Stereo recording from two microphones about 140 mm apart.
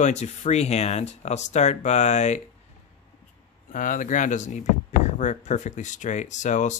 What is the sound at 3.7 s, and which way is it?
Speech, 70° left (ahead or behind).